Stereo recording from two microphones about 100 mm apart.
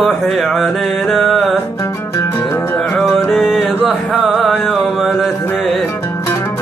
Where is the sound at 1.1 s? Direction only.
Centre (ahead or behind).